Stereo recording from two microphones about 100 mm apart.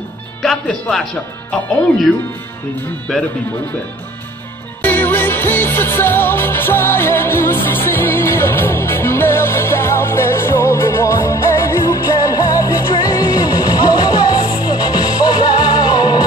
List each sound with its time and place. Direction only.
0.4 s speech: 5° left (ahead or behind)
3.1 s speech: centre (ahead or behind)
4.8 s music: 20° left (ahead or behind); by 16.3 s 45° left (ahead or behind)